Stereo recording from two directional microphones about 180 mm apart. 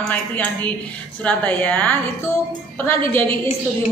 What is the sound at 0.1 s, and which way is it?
Speech, 10° left (ahead or behind).